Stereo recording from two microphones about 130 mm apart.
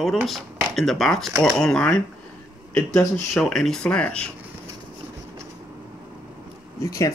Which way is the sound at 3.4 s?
Centre (ahead or behind).